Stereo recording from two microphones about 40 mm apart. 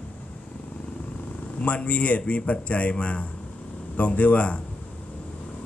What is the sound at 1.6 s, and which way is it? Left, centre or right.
Speech, left.